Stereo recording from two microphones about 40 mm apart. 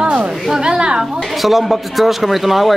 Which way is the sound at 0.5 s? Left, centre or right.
Centre.